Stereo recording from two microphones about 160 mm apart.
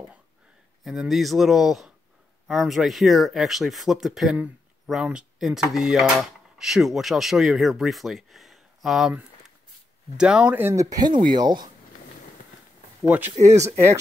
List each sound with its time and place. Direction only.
0.8 s speech: centre (ahead or behind)
10.1 s speech: 5° right (ahead or behind); by 11.7 s 25° right (ahead or behind)
13.0 s speech: 10° right (ahead or behind)